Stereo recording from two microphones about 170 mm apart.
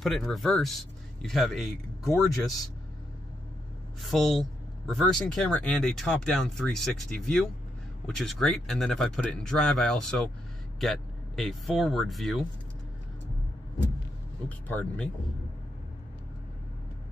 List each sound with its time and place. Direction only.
0.0 s speech: centre (ahead or behind)
4.0 s speech: centre (ahead or behind)
14.7 s speech: 10° left (ahead or behind)